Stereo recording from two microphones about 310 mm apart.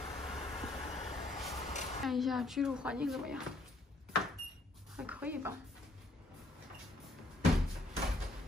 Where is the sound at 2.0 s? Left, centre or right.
Centre.